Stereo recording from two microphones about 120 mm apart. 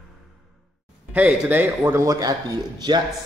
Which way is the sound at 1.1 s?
15° right (ahead or behind).